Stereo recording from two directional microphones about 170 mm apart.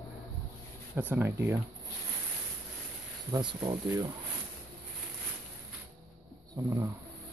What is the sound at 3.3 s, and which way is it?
Speech, 25° right (ahead or behind).